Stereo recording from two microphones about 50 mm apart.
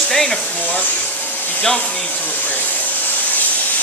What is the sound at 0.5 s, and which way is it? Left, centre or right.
Speech, left.